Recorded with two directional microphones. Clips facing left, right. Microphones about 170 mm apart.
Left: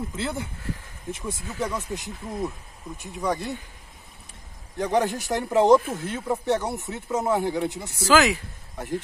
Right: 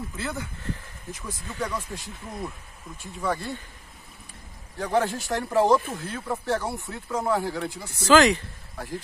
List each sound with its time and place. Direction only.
0.1 s speech: 25° left (ahead or behind)
4.7 s speech: 20° left (ahead or behind)
8.0 s speech: 5° left (ahead or behind)
8.8 s speech: 20° left (ahead or behind)